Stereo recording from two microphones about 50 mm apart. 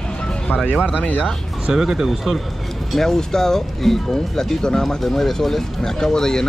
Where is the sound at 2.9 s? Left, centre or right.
Centre.